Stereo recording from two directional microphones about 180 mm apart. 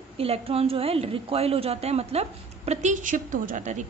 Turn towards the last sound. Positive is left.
turn(degrees=-45)  # may be behind; listen again after turning